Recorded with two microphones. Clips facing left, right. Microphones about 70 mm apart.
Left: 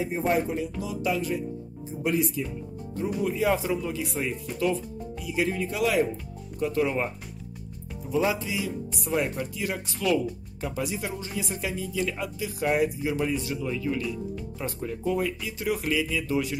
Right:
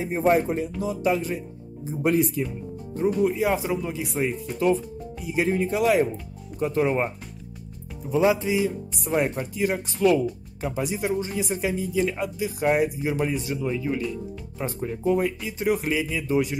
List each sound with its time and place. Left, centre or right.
0.0 s speech: right
2.0 s speech: right
3.3 s speech: centre
8.1 s speech: right